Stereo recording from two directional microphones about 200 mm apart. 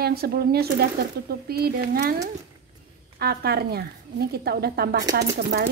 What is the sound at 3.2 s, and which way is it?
Speech, 50° right (ahead or behind).